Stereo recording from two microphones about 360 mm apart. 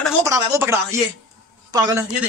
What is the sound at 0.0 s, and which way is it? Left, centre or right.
Speech, centre.